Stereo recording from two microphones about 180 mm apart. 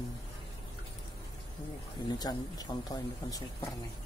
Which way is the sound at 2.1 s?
20° left (ahead or behind).